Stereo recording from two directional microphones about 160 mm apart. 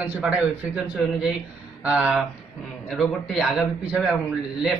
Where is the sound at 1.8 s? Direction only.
10° right (ahead or behind).